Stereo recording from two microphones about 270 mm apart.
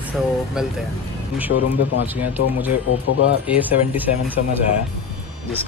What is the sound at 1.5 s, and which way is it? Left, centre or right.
Speech, left.